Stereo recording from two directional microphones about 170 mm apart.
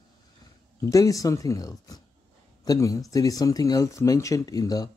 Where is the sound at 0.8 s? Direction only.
20° left (ahead or behind).